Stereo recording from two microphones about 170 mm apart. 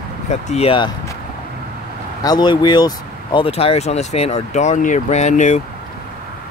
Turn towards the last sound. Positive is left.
turn(degrees=45)  # may be behind; listen again after turning